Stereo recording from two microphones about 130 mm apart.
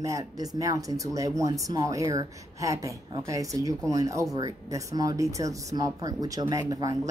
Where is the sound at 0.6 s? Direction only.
25° right (ahead or behind).